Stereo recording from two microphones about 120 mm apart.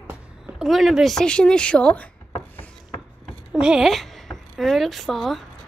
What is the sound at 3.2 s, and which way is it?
Speech, 5° right (ahead or behind).